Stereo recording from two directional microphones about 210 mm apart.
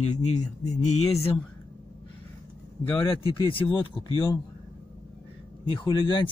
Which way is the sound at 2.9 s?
25° left (ahead or behind).